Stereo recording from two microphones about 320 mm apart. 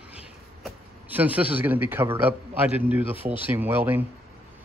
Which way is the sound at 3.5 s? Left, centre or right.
Centre.